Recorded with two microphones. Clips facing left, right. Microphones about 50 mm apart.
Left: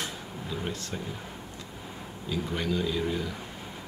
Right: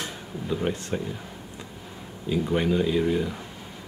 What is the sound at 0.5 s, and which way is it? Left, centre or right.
Speech, right.